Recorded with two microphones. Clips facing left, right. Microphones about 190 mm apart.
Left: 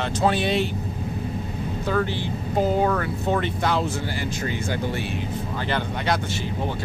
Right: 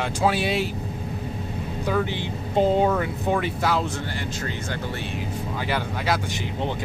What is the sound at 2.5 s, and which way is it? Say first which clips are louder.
Speech: right 2 dB; 25° right (ahead or behind).